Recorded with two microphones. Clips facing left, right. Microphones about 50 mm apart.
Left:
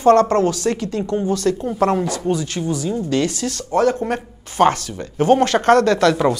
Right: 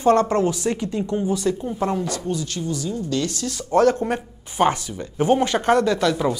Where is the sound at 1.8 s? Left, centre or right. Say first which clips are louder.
Left 6 dB; left.